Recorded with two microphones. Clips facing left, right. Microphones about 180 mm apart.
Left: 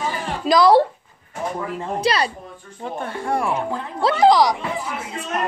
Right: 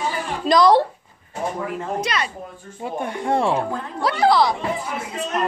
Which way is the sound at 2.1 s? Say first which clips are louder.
Left 9 dB; 30° left (ahead or behind).